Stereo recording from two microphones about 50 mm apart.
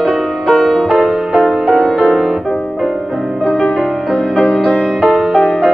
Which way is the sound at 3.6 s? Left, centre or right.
Centre.